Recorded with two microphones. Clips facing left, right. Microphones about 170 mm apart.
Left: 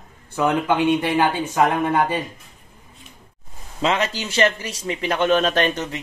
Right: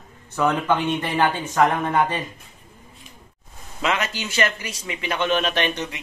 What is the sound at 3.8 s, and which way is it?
A man's voice, 30° left (ahead or behind).